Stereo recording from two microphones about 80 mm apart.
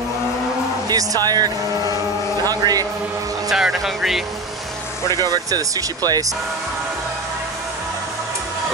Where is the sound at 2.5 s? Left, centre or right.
Right.